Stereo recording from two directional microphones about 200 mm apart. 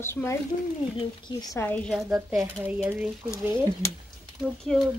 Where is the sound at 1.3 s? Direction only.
10° left (ahead or behind).